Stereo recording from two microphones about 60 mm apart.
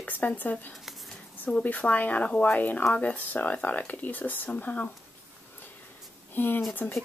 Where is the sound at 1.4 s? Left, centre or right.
Left.